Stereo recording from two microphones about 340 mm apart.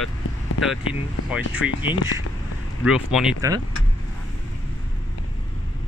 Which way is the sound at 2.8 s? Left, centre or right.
Centre.